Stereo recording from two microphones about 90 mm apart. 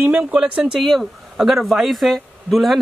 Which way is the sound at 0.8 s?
Centre (ahead or behind).